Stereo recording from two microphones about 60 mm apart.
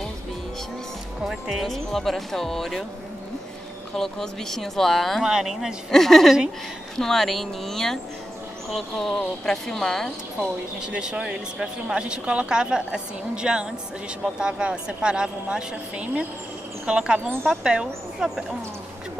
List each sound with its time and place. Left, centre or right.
1.2 s speech: centre
3.9 s speech: centre
5.2 s speech: centre
5.9 s speech: centre
10.8 s speech: centre